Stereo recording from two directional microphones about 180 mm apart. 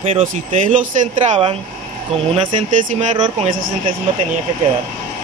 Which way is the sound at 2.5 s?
45° right (ahead or behind).